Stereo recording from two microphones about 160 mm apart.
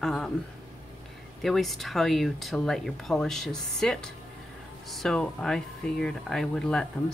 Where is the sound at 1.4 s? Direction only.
Centre (ahead or behind).